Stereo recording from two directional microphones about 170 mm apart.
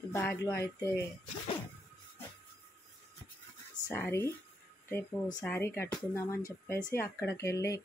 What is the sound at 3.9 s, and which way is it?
Speech, 15° left (ahead or behind).